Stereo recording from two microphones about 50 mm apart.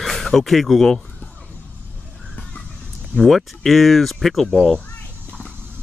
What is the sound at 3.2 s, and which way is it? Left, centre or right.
Speech, centre.